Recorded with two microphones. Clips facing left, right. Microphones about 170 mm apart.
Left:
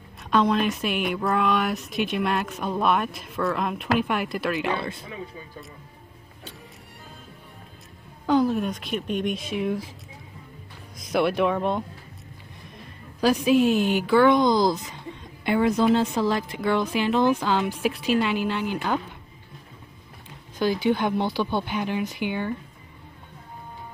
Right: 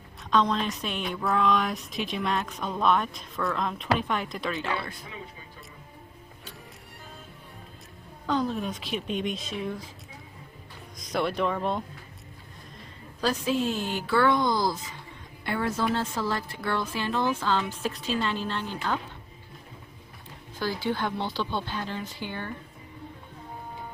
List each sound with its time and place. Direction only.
0.3 s speech: 10° left (ahead or behind)
4.6 s speech: 25° left (ahead or behind)
8.3 s speech: 10° left (ahead or behind)
9.2 s speech: 60° left (ahead or behind)
9.6 s a woman's voice: 10° left (ahead or behind)
11.0 s speech: 5° left (ahead or behind)
13.2 s a woman's voice: 15° left (ahead or behind)
20.5 s a woman's voice: 20° left (ahead or behind)